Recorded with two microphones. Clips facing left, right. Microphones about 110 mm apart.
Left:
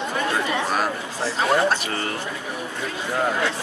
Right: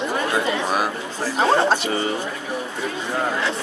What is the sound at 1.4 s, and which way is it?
Speech, 30° right (ahead or behind).